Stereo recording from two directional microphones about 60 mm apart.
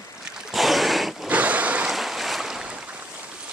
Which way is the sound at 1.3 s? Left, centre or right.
Right.